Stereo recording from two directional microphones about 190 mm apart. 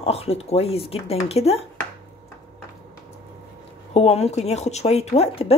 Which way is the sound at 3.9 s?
35° left (ahead or behind).